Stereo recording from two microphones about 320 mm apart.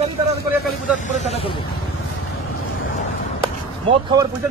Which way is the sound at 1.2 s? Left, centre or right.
Centre.